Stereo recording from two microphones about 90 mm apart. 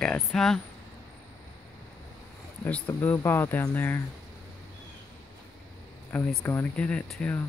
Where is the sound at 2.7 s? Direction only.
15° left (ahead or behind).